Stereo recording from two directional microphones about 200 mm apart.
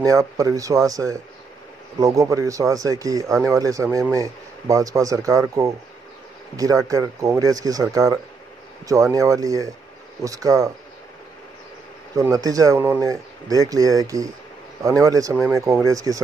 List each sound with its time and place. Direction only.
0.0 s speech: 15° right (ahead or behind)
12.2 s speech: 15° right (ahead or behind)